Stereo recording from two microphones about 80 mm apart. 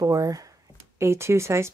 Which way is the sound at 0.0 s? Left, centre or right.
Right.